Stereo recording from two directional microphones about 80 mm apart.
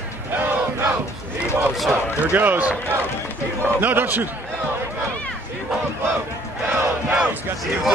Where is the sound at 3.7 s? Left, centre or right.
Right.